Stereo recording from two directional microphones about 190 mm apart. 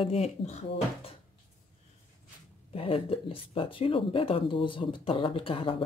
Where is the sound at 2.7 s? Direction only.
30° left (ahead or behind).